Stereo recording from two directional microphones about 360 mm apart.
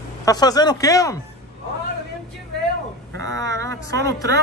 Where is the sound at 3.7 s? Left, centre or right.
Centre.